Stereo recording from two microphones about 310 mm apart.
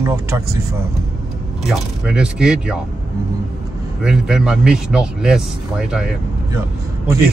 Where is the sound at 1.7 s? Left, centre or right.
Centre.